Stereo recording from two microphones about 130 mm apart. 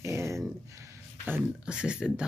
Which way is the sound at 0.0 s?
20° right (ahead or behind).